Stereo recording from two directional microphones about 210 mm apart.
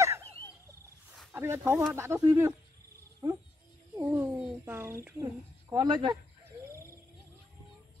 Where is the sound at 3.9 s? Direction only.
10° right (ahead or behind).